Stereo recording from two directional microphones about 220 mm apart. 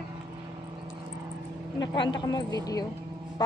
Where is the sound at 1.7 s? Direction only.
20° left (ahead or behind).